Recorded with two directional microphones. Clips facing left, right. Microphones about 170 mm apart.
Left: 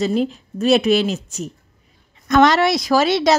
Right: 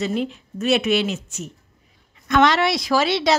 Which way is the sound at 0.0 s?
35° left (ahead or behind).